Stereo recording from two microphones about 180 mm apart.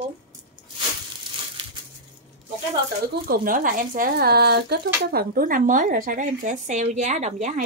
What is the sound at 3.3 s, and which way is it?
Speech, 50° right (ahead or behind).